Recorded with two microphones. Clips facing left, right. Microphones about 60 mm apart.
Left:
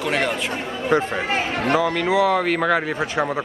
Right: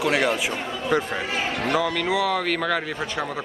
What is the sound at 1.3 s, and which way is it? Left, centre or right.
Speech, left.